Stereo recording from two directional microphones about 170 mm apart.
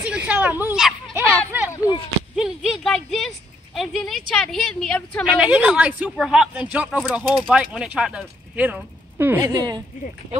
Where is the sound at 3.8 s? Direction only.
Centre (ahead or behind).